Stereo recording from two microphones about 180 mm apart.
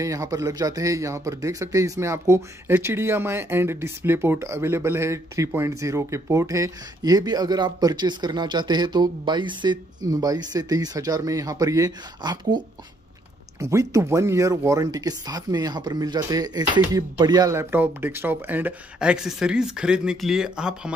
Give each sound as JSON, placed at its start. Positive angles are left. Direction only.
{"t": 0.0, "sound": "a man's voice", "side_deg": -15}